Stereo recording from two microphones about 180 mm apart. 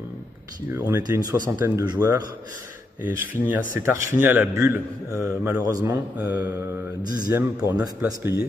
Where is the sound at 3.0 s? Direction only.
10° right (ahead or behind).